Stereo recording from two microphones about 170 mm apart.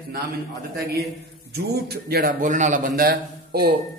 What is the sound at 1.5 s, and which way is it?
A man's voice, 70° right (ahead or behind).